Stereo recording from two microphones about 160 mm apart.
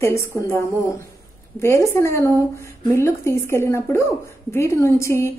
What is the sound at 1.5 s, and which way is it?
A woman's voice, 15° left (ahead or behind).